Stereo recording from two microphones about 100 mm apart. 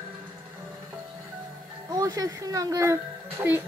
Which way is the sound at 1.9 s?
40° right (ahead or behind).